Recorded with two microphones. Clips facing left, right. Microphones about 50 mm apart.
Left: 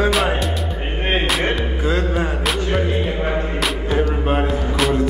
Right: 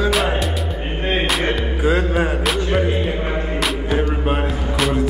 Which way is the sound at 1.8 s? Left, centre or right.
Centre.